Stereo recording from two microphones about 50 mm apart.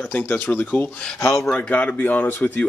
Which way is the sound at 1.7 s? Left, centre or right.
Left.